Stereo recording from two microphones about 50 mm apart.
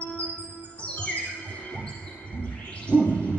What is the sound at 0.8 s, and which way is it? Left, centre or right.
Music, left.